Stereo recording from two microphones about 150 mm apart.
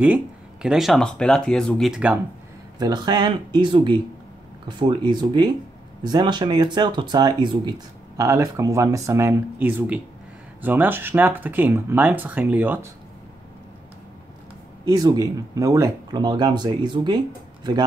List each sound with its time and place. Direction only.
0.0 s speech: 10° right (ahead or behind)
2.8 s speech: 30° right (ahead or behind)
8.2 s speech: 20° right (ahead or behind)
14.9 s speech: 25° right (ahead or behind)